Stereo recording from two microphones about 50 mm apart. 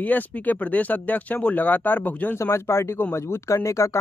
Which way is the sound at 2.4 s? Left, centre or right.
Left.